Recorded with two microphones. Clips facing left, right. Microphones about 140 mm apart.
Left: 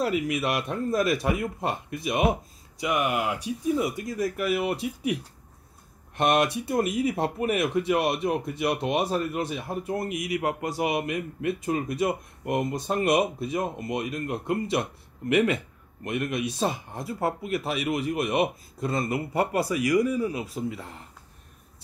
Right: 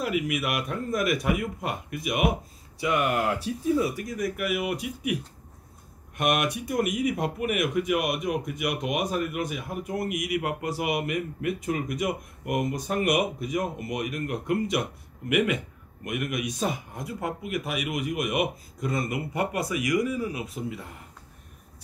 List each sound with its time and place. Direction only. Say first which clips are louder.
0.0 s speech: left 2 dB; 30° left (ahead or behind)
6.1 s speech: left 3 dB; 25° left (ahead or behind)